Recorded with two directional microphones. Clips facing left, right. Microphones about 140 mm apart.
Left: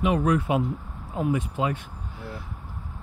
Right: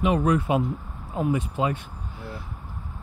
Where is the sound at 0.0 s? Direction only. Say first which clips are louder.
Right 1 dB; 30° right (ahead or behind).